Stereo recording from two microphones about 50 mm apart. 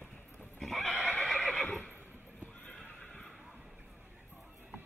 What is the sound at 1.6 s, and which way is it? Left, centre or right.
Neigh, left.